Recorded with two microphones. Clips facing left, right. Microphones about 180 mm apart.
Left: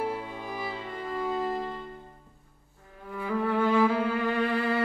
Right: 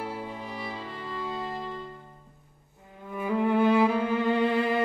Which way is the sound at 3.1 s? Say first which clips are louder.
Right 3 dB; 20° right (ahead or behind).